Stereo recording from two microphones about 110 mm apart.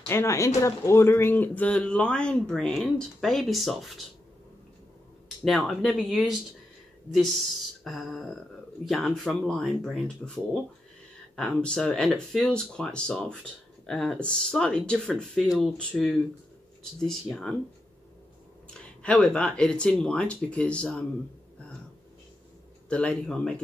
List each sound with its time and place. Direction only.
0.1 s speech: 25° left (ahead or behind); by 4.0 s centre (ahead or behind)
5.4 s speech: centre (ahead or behind)
18.7 s speech: 10° left (ahead or behind)
22.8 s speech: 10° left (ahead or behind)